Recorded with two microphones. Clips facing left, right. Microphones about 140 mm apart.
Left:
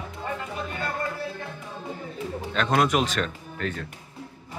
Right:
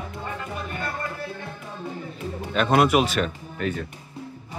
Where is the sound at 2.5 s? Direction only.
10° right (ahead or behind).